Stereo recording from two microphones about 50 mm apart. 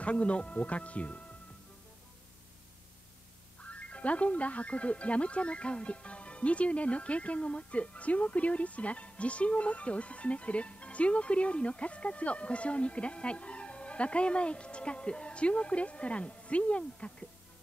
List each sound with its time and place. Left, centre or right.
0.0 s speech: left
3.6 s speech: left